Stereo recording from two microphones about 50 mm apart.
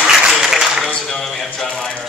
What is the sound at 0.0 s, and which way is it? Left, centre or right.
Applause, centre.